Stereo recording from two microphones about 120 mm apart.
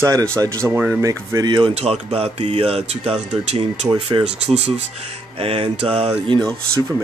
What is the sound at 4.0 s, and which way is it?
Speech, 50° right (ahead or behind).